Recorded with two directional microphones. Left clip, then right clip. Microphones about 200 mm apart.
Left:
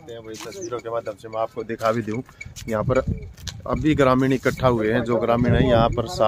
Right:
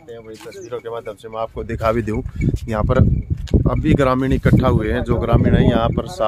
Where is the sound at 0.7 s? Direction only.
30° right (ahead or behind); by 3.1 s 55° right (ahead or behind).